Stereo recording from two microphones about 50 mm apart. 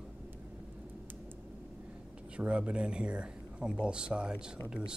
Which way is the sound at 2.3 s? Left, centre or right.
Right.